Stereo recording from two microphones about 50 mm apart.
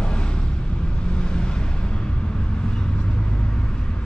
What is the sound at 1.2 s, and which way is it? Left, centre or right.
Vehicle, centre.